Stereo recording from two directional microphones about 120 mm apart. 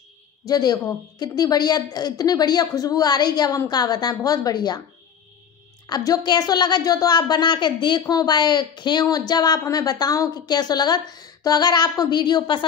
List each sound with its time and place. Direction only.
0.5 s a woman's voice: 35° left (ahead or behind)
5.9 s a woman's voice: 35° left (ahead or behind)